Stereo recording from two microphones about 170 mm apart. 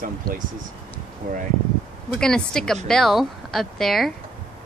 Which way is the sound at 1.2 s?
55° right (ahead or behind).